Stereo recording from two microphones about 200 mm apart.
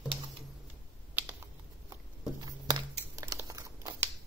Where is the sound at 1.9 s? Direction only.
20° right (ahead or behind).